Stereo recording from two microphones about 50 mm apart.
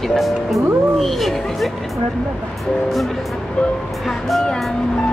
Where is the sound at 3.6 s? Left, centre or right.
Centre.